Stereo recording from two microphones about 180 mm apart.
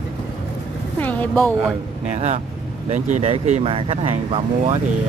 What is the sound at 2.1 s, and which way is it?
Speech, 35° right (ahead or behind).